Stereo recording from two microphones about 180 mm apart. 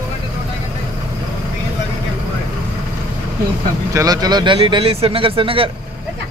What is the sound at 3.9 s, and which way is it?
A man's voice, 20° right (ahead or behind).